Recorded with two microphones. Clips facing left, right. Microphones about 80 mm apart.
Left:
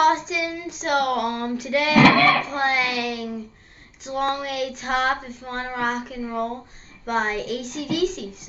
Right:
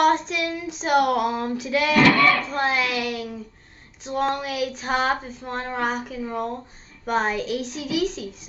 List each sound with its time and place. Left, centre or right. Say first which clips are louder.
0.0 s child singing: even; centre
2.0 s speech: left 2 dB; left
2.4 s speech: left 1 dB; centre